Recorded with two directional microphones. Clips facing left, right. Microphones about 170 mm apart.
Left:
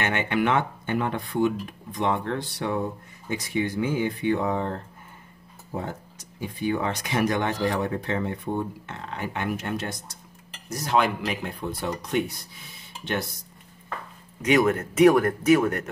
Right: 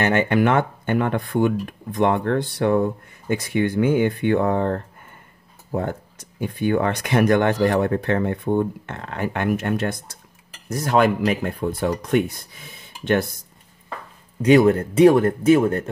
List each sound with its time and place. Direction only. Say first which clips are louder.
0.0 s speech: right 6 dB; 40° right (ahead or behind); by 4.8 s 60° right (ahead or behind)
6.4 s speech: right 6 dB; 60° right (ahead or behind)
14.4 s speech: right 7 dB; 30° right (ahead or behind)